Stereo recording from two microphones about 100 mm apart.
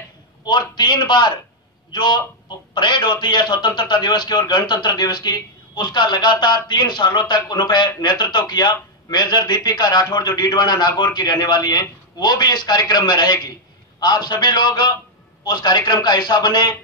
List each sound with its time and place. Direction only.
0.5 s a man's voice: 50° left (ahead or behind)